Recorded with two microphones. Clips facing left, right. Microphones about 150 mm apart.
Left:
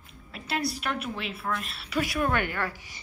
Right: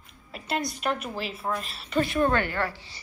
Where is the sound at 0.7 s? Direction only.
Centre (ahead or behind).